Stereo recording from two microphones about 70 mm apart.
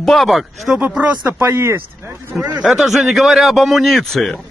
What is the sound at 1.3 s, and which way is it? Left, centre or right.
Speech, right.